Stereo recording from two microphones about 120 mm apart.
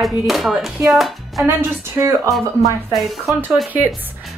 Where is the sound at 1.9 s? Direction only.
25° right (ahead or behind).